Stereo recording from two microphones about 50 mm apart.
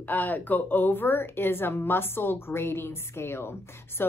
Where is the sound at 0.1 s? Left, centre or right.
Left.